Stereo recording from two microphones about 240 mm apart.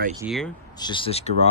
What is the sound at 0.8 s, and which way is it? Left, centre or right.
Speech, centre.